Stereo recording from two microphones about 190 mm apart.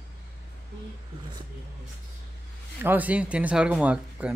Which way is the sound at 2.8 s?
10° right (ahead or behind).